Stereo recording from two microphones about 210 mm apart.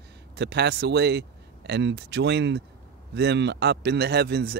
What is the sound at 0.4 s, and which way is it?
Speech, 50° right (ahead or behind).